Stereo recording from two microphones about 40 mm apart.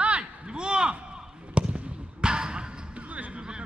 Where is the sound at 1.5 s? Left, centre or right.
Right.